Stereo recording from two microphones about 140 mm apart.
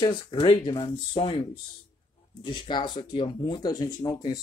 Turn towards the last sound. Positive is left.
turn(degrees=30)  # may be behind; listen again after turning